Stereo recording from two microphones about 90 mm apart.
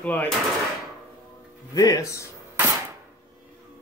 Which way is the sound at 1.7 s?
45° left (ahead or behind).